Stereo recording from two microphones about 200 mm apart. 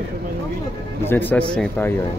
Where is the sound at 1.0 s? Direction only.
10° left (ahead or behind).